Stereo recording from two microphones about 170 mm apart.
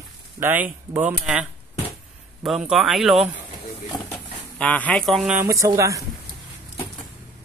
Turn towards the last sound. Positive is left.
turn(degrees=-20)  # may be behind; listen again after turning